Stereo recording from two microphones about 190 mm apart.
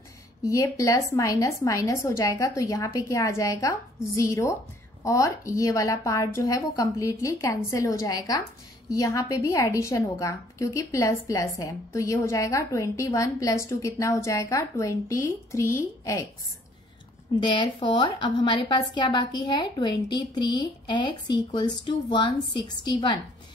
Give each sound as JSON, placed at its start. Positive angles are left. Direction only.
{"t": 0.4, "sound": "a woman's voice", "side_deg": 15}
{"t": 17.4, "sound": "a woman's voice", "side_deg": 25}